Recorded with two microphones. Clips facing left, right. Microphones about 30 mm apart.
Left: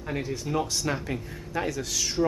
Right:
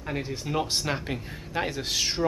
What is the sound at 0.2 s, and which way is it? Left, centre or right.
Speech, right.